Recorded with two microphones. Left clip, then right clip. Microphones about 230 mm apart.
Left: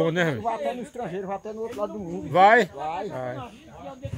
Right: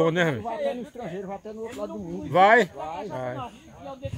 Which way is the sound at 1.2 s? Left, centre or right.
Left.